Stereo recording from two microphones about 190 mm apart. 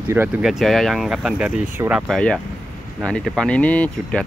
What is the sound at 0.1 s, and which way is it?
Speech, 10° right (ahead or behind).